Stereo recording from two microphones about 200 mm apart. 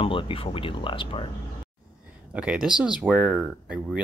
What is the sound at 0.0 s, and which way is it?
Speech, 25° left (ahead or behind).